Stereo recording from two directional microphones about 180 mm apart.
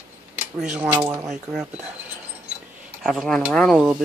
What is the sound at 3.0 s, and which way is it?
Speech, centre (ahead or behind).